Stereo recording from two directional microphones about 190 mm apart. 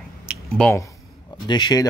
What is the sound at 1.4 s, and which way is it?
Speech, 25° left (ahead or behind).